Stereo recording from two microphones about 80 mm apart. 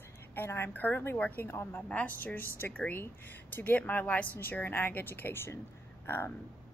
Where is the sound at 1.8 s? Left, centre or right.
Centre.